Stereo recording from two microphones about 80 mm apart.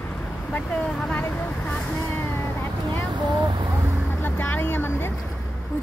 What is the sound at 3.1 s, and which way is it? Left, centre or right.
Speech, right.